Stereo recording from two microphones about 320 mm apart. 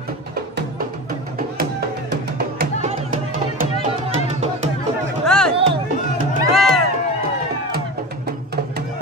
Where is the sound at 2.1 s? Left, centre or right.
Right.